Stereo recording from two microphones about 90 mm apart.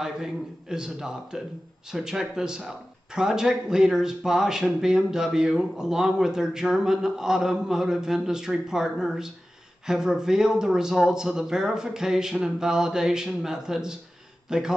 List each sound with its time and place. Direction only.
0.0 s speech: 5° right (ahead or behind)